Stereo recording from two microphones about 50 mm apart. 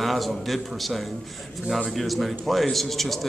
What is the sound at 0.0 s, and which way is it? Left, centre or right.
A man's voice, centre.